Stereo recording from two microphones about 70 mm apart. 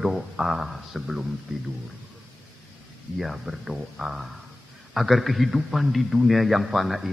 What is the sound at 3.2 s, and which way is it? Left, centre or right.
A man's voice, centre.